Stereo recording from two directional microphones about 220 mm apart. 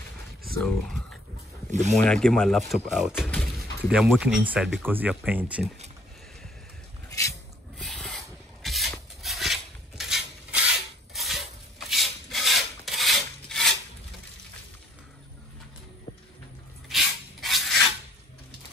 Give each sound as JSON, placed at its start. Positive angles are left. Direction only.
{"t": 1.7, "sound": "speech", "side_deg": -30}
{"t": 2.0, "sound": "speech", "side_deg": 5}
{"t": 7.1, "sound": "a sound", "side_deg": 15}
{"t": 7.7, "sound": "filing", "side_deg": 0}
{"t": 11.1, "sound": "a sound", "side_deg": 0}
{"t": 11.9, "sound": "filing", "side_deg": 0}
{"t": 16.9, "sound": "spray", "side_deg": 0}